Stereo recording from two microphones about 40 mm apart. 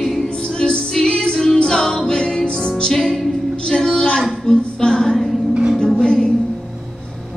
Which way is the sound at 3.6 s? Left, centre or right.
Centre.